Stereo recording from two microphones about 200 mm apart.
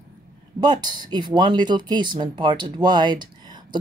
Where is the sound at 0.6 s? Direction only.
20° right (ahead or behind).